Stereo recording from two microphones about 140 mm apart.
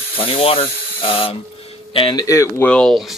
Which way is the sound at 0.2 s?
45° left (ahead or behind).